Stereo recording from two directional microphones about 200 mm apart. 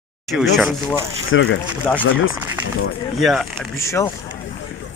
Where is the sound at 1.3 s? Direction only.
75° left (ahead or behind).